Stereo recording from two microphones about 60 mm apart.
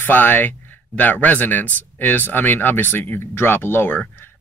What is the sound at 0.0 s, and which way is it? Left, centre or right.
Speech, left.